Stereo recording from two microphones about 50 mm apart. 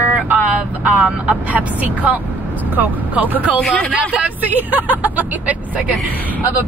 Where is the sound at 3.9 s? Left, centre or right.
Right.